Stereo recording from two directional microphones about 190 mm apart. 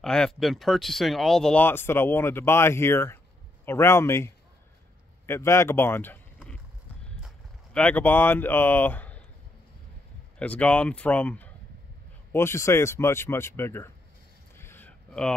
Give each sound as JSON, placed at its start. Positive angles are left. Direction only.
{"t": 0.0, "sound": "speech", "side_deg": 5}
{"t": 7.1, "sound": "vehicle", "side_deg": 5}
{"t": 10.4, "sound": "speech", "side_deg": 5}
{"t": 14.6, "sound": "a sound", "side_deg": 10}